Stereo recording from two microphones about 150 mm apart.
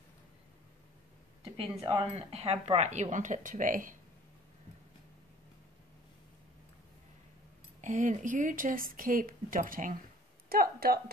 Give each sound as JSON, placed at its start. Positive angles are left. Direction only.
{"t": 1.9, "sound": "speech", "side_deg": -40}
{"t": 7.8, "sound": "speech", "side_deg": -55}
{"t": 10.5, "sound": "speech", "side_deg": -85}